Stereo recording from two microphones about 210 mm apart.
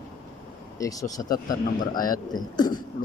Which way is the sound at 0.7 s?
15° left (ahead or behind).